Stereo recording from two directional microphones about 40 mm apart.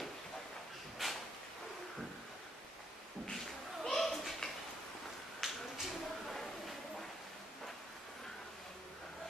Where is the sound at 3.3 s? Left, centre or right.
Centre.